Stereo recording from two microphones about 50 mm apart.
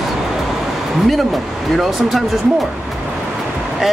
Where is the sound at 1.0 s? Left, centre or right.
Centre.